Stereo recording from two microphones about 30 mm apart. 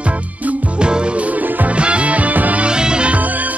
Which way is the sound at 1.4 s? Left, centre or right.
Right.